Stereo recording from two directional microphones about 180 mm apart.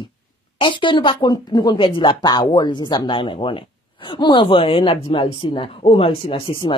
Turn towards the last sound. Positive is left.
turn(degrees=30)  # may be behind; listen again after turning